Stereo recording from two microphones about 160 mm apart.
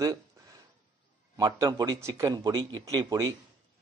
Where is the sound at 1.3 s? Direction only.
20° right (ahead or behind).